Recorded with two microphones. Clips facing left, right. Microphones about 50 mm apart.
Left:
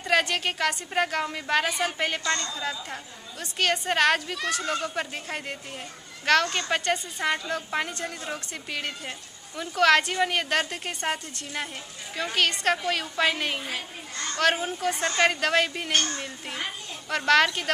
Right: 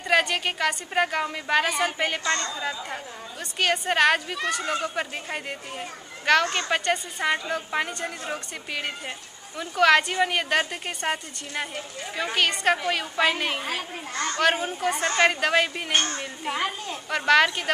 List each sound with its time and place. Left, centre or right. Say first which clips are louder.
0.0 s a woman's voice: right 2 dB; centre
2.2 s a woman's voice: right 2 dB; centre
15.9 s speech: right 1 dB; centre
17.1 s a woman's voice: right 1 dB; centre